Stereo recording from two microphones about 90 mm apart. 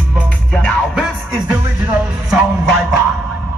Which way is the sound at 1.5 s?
20° right (ahead or behind).